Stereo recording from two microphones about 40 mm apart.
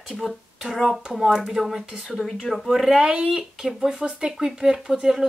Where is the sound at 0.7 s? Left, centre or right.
Centre.